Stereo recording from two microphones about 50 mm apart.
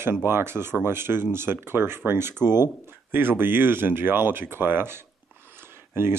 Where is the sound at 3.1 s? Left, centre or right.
Right.